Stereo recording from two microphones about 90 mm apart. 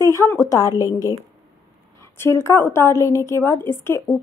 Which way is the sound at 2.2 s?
30° left (ahead or behind).